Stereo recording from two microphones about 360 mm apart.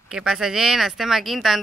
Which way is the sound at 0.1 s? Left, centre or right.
Centre.